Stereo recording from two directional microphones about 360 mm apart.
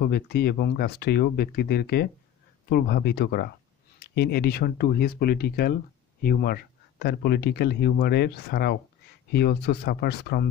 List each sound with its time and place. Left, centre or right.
0.0 s speech: left